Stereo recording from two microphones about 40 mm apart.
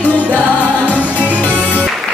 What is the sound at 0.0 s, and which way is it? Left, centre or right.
Music, left.